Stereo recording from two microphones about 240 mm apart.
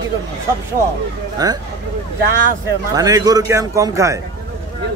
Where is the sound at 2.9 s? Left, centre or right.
Centre.